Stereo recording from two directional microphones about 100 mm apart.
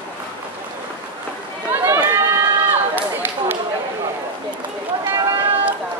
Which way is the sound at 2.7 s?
20° right (ahead or behind).